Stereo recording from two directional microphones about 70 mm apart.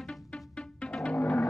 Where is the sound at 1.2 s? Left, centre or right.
Left.